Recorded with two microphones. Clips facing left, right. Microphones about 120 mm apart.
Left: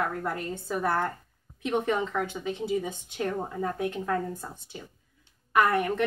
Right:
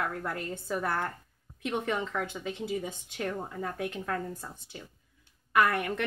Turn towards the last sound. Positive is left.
turn(degrees=25)  # may be behind; listen again after turning